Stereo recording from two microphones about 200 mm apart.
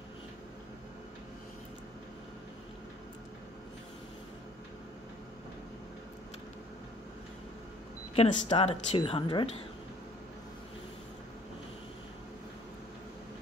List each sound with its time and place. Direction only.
8.1 s speech: 30° left (ahead or behind)